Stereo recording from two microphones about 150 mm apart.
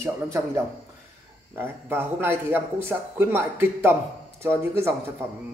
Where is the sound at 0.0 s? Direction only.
20° right (ahead or behind).